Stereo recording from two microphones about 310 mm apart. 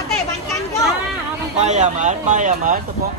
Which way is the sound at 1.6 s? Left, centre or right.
Right.